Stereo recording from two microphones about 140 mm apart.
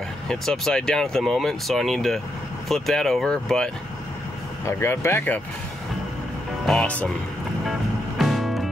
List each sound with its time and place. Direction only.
0.3 s speech: 5° left (ahead or behind)
4.6 s speech: 20° left (ahead or behind)
6.6 s speech: 5° left (ahead or behind)
8.2 s music: centre (ahead or behind)